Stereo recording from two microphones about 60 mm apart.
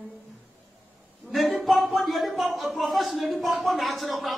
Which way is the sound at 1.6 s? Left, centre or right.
Centre.